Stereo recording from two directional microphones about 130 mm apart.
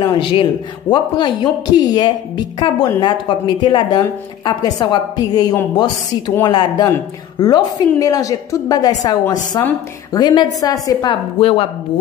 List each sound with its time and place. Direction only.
0.0 s a woman's voice: 40° left (ahead or behind)
10.1 s speech: 30° left (ahead or behind)
11.3 s speech: 45° left (ahead or behind)